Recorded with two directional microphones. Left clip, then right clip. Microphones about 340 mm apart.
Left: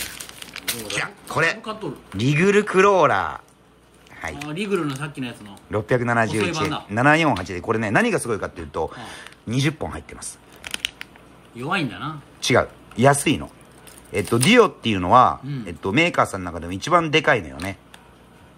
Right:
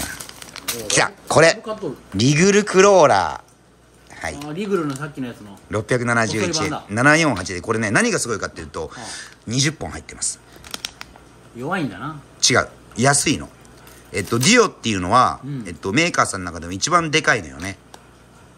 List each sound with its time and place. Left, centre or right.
0.5 s crumpling: centre
0.8 s speech: centre
11.6 s speech: centre